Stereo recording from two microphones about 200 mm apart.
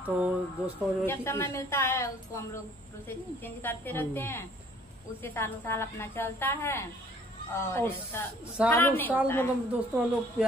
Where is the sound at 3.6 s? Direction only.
10° left (ahead or behind).